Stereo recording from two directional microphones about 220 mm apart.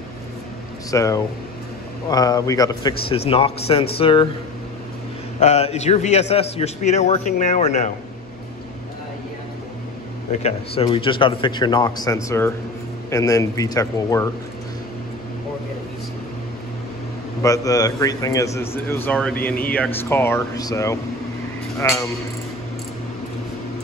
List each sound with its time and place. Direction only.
0.9 s a man's voice: 15° left (ahead or behind)
5.4 s a man's voice: 30° left (ahead or behind)
10.4 s a man's voice: 25° left (ahead or behind)
17.4 s a man's voice: 15° left (ahead or behind)